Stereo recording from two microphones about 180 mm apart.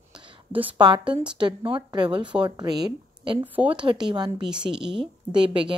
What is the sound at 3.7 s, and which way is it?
Speech, 25° right (ahead or behind).